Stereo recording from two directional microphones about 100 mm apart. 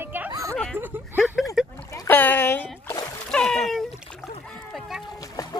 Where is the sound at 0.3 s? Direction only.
35° right (ahead or behind).